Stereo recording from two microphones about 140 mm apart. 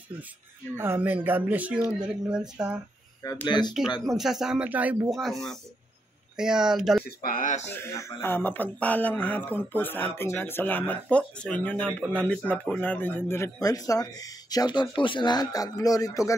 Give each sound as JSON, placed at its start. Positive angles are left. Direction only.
{"t": 0.7, "sound": "speech", "side_deg": -15}
{"t": 3.4, "sound": "speech", "side_deg": 30}
{"t": 4.0, "sound": "speech", "side_deg": 0}
{"t": 5.1, "sound": "speech", "side_deg": 0}
{"t": 7.2, "sound": "speech", "side_deg": 85}
{"t": 7.7, "sound": "speech", "side_deg": 20}